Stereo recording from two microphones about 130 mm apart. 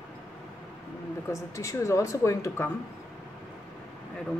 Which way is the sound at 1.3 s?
25° left (ahead or behind).